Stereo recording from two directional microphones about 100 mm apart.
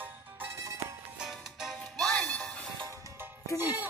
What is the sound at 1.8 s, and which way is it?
Music, 5° left (ahead or behind).